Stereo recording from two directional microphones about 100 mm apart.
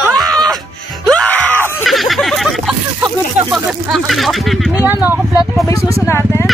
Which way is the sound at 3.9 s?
Centre (ahead or behind).